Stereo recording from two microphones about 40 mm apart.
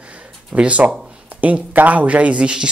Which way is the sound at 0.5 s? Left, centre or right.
Right.